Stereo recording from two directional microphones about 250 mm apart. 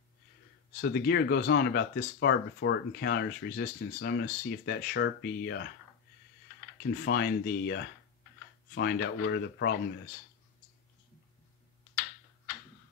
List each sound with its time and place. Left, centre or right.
0.7 s speech: left
6.9 s speech: left